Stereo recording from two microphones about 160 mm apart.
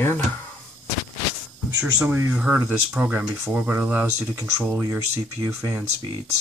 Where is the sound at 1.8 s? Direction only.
10° right (ahead or behind).